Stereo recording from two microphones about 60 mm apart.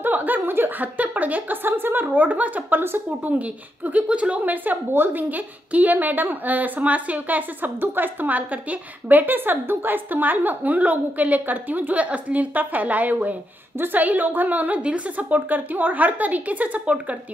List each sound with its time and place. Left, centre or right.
0.0 s a woman's voice: right